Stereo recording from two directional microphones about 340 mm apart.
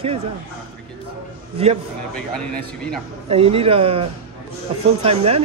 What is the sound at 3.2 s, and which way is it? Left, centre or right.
Speech, centre.